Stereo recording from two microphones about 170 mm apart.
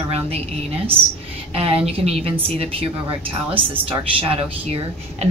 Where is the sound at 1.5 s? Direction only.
35° right (ahead or behind).